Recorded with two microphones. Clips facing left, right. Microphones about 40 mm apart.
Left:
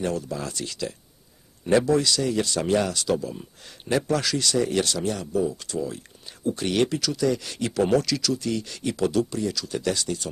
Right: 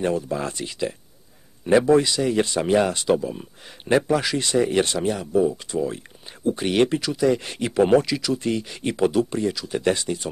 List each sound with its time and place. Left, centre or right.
0.0 s speech: right